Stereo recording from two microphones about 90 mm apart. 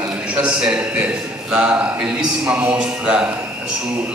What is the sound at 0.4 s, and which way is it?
A man's voice, 10° right (ahead or behind).